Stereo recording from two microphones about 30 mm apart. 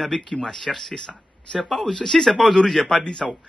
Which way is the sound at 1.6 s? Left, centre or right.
Centre.